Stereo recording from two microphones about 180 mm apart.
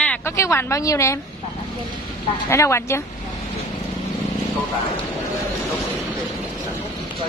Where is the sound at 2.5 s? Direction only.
15° left (ahead or behind).